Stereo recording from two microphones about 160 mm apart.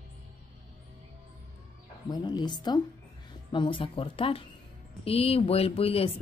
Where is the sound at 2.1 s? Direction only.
25° left (ahead or behind).